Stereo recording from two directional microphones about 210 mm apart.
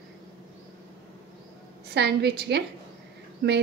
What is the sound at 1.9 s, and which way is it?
Speech, 50° right (ahead or behind).